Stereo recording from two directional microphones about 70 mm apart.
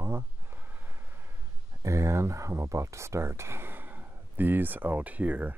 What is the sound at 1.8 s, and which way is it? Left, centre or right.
Speech, right.